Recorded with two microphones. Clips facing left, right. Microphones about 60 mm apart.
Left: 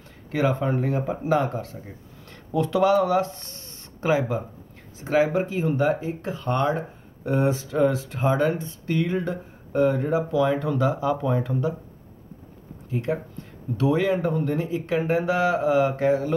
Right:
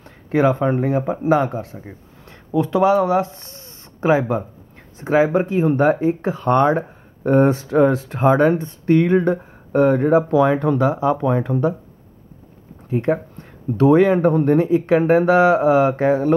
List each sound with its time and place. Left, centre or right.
0.3 s speech: right
1.8 s a sound: right
2.3 s speech: centre
4.0 s speech: right
12.9 s speech: right